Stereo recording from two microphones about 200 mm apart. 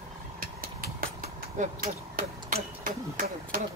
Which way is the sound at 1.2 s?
40° right (ahead or behind).